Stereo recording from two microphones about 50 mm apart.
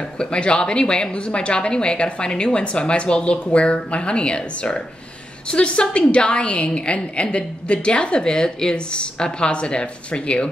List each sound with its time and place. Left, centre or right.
0.2 s a woman's voice: centre